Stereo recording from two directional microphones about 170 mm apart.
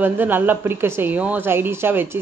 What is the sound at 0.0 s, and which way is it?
Speech, 10° right (ahead or behind).